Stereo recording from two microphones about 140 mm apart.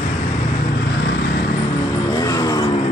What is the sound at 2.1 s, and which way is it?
Vehicle, 25° left (ahead or behind).